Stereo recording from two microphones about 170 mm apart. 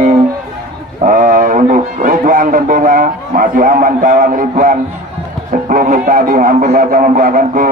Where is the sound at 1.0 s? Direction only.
50° right (ahead or behind).